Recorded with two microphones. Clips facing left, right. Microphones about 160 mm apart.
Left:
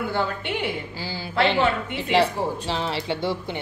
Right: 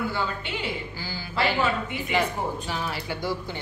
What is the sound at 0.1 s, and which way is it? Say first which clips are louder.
Speech: left 4 dB; 60° left (ahead or behind).